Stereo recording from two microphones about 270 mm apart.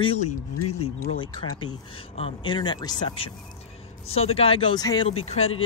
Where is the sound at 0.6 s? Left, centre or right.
Left.